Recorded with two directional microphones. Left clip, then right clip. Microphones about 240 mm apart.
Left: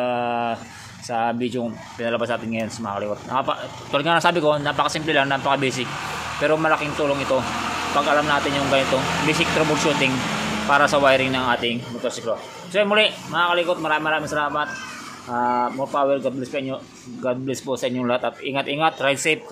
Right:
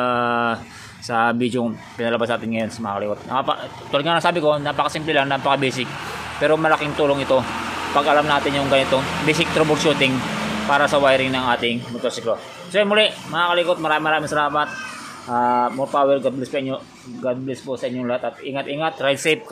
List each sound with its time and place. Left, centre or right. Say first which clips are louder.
0.0 s a sound: right 3 dB; centre
1.0 s speech: right 4 dB; centre
17.2 s speech: even; centre